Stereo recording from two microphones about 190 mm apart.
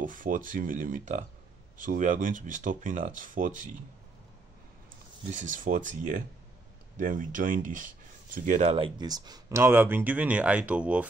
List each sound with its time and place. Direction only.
0.0 s speech: 45° right (ahead or behind)
5.3 s speech: 40° right (ahead or behind); by 11.1 s 5° right (ahead or behind)